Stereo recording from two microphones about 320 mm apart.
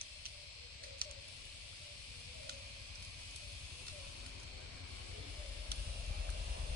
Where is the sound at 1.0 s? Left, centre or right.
Right.